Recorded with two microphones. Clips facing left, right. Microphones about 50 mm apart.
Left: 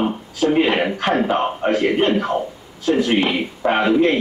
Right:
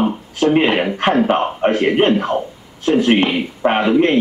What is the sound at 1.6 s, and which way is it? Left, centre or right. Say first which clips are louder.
Speech: right 4 dB; right.